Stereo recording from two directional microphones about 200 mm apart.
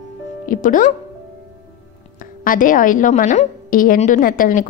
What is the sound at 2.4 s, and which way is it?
A woman's voice, 45° left (ahead or behind).